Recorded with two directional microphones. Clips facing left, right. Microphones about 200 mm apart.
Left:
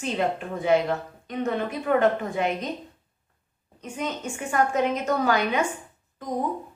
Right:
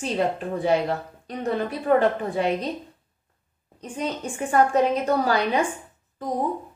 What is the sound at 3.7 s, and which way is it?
A woman's voice, 35° right (ahead or behind).